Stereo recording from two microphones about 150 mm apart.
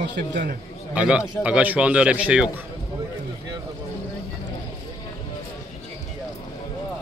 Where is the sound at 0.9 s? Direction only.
10° right (ahead or behind).